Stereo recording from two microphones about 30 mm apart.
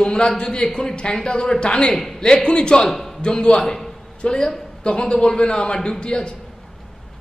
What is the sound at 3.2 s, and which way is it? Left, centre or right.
A man's voice, left.